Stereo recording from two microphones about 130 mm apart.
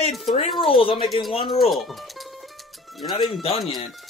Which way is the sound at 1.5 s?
Centre (ahead or behind).